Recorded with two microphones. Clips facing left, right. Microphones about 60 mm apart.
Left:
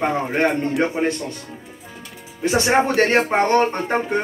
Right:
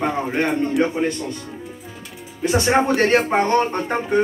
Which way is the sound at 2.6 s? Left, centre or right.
Left.